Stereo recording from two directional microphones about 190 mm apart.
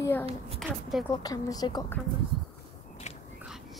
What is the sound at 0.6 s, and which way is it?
Speech, centre (ahead or behind).